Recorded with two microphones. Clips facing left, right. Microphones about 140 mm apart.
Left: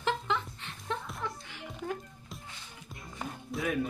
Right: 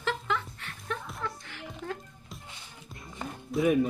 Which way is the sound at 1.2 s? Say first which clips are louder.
Right 1 dB; 15° left (ahead or behind).